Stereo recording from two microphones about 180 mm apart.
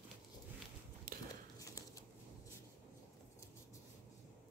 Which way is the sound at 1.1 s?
50° right (ahead or behind).